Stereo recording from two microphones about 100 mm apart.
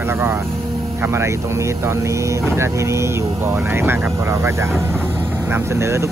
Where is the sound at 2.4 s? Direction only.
25° right (ahead or behind).